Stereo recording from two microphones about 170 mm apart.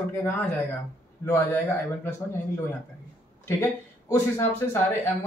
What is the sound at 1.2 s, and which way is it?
Speech, 15° left (ahead or behind).